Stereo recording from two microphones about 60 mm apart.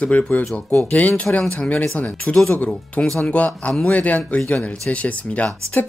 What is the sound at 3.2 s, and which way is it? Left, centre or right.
Speech, left.